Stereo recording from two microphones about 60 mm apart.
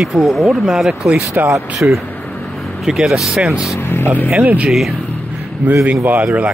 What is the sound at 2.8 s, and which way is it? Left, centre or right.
Speech, centre.